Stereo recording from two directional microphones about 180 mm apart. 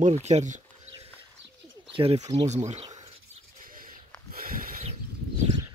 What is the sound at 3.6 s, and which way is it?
Owl, 50° right (ahead or behind).